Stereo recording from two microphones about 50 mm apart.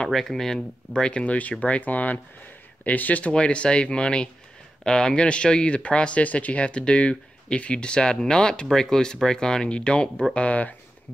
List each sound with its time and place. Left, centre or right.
0.1 s speech: centre
1.2 s speech: left